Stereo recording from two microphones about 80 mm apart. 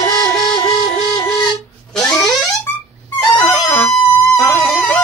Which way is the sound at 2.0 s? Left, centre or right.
Centre.